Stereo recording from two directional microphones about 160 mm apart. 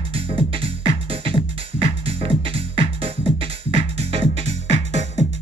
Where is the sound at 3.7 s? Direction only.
40° right (ahead or behind).